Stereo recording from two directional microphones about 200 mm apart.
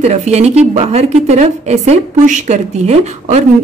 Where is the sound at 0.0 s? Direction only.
35° right (ahead or behind).